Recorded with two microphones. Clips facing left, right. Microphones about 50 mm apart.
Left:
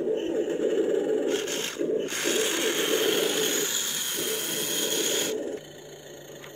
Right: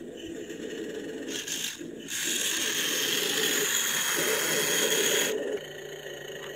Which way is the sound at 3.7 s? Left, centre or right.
Right.